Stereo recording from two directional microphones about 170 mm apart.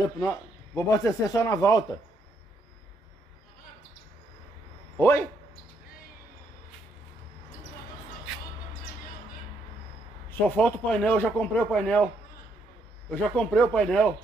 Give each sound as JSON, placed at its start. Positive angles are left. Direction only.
{"t": 0.2, "sound": "speech", "side_deg": 15}
{"t": 4.9, "sound": "a man's voice", "side_deg": 15}
{"t": 10.5, "sound": "speech", "side_deg": 5}
{"t": 13.1, "sound": "speech", "side_deg": 5}